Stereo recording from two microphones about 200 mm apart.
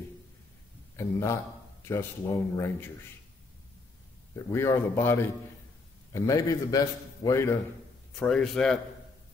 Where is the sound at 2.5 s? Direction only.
15° left (ahead or behind).